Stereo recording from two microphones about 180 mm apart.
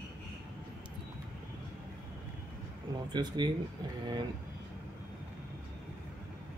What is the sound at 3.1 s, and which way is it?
Speech, 25° right (ahead or behind).